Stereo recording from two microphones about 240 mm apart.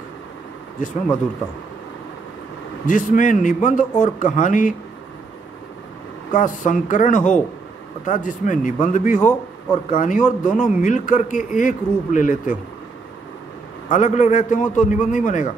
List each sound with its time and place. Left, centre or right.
2.9 s speech: left
6.3 s speech: left
13.8 s speech: left